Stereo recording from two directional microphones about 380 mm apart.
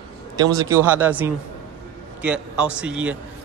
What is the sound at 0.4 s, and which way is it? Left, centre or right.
A man's voice, centre.